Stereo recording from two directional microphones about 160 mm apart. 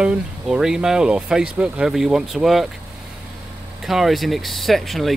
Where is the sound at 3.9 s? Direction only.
Centre (ahead or behind).